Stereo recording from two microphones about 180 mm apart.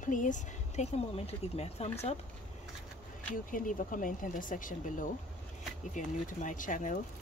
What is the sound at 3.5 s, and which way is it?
Speech, 50° left (ahead or behind).